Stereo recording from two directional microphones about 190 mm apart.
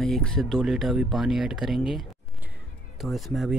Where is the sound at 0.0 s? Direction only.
5° left (ahead or behind).